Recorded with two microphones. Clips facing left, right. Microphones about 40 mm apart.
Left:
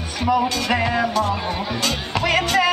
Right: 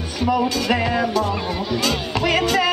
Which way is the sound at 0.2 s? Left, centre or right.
Centre.